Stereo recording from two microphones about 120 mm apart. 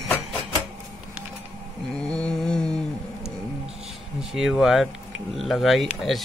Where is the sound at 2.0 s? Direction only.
10° left (ahead or behind).